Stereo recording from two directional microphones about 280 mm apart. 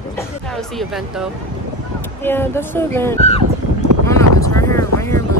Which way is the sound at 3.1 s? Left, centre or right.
Left.